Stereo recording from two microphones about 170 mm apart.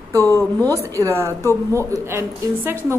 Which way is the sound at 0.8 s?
20° right (ahead or behind).